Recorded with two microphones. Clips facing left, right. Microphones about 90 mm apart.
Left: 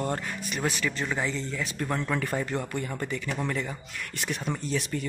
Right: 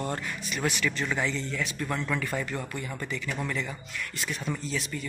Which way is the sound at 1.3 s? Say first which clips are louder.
Even; 35° left (ahead or behind).